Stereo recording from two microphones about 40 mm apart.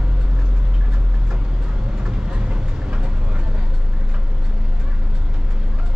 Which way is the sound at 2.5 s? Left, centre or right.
Right.